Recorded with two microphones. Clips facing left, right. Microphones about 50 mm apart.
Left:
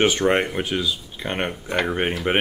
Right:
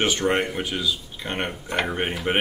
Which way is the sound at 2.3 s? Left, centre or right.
Left.